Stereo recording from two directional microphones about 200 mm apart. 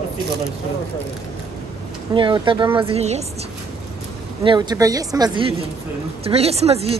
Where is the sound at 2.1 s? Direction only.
25° right (ahead or behind).